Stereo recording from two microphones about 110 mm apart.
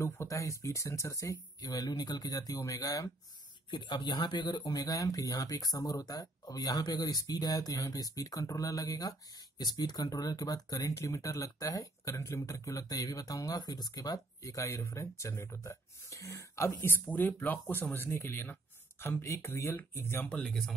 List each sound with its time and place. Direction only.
0.0 s speech: 25° left (ahead or behind)
3.7 s speech: 45° left (ahead or behind); by 20.2 s 20° left (ahead or behind)
20.2 s a man's voice: 5° left (ahead or behind)